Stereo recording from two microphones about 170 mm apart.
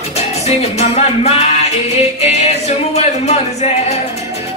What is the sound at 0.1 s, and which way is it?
Music, 40° left (ahead or behind).